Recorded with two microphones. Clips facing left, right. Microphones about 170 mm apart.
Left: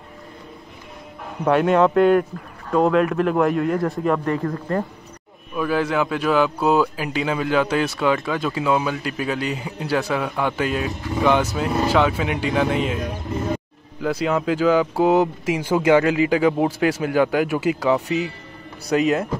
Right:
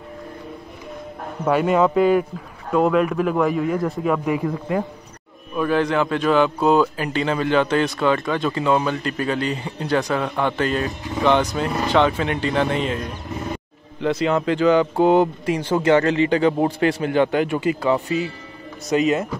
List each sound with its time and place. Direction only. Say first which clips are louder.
1.5 s speech: left 1 dB; centre (ahead or behind)
5.5 s speech: right 2 dB; 5° left (ahead or behind)
14.0 s speech: right 1 dB; 5° left (ahead or behind)
18.0 s a man's voice: even; 70° left (ahead or behind)
18.9 s speech: even; 5° left (ahead or behind)